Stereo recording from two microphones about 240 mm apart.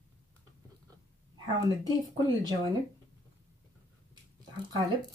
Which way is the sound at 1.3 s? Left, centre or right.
Centre.